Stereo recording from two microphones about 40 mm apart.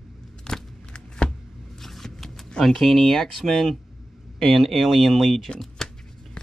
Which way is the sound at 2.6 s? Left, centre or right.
Centre.